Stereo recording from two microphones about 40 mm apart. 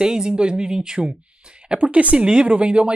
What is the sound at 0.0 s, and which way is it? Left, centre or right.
Speech, centre.